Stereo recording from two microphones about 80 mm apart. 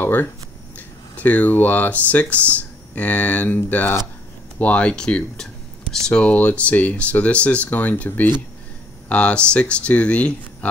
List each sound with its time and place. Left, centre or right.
0.0 s speech: left